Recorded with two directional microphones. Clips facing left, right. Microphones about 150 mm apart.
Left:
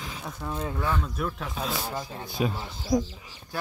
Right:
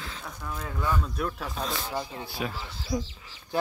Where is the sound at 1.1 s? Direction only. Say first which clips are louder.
Even; centre (ahead or behind).